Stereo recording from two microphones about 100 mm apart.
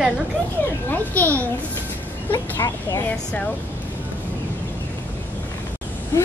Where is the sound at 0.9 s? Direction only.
20° left (ahead or behind).